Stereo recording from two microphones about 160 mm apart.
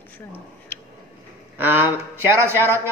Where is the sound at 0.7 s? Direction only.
10° left (ahead or behind).